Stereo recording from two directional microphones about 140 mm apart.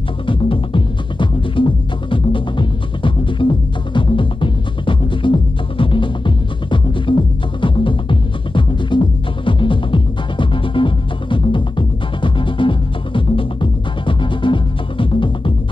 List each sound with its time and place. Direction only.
0.3 s music: 35° left (ahead or behind)